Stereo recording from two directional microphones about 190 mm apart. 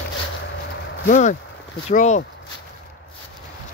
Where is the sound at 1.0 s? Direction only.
40° left (ahead or behind).